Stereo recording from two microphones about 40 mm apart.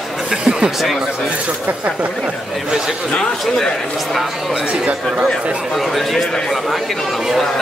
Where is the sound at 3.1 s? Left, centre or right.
Centre.